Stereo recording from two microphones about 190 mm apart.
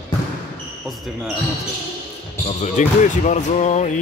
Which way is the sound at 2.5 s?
40° left (ahead or behind).